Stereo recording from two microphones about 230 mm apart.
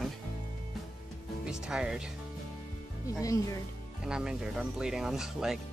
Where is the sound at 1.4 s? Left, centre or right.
Centre.